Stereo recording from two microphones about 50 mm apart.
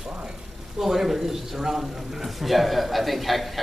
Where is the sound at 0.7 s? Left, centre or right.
Centre.